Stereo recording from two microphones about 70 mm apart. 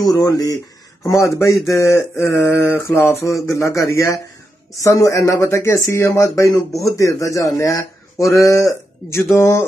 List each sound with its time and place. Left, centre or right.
0.0 s speech: left
1.3 s a man's voice: left
9.4 s music: left